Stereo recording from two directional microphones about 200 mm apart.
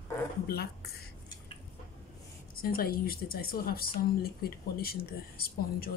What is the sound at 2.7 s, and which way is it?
Speech, 45° left (ahead or behind).